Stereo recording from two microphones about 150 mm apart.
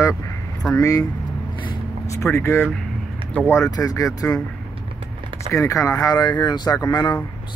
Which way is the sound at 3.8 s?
20° left (ahead or behind).